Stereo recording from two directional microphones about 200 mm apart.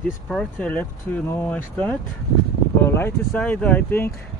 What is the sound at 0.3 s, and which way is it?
Speech, 5° left (ahead or behind).